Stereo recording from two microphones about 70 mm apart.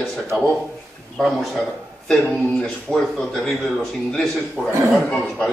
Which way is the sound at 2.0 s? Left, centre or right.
Centre.